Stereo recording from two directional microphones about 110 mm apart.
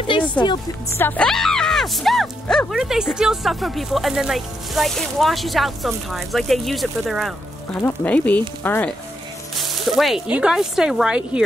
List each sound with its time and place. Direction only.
0.9 s speech: 20° left (ahead or behind)
1.2 s speech: 5° left (ahead or behind)
7.8 s speech: 15° left (ahead or behind)
9.6 s speech: centre (ahead or behind)